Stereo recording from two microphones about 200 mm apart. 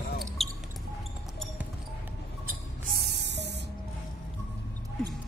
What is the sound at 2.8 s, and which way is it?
Music, 55° right (ahead or behind).